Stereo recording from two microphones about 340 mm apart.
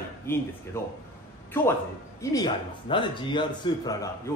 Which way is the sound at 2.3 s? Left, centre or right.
Centre.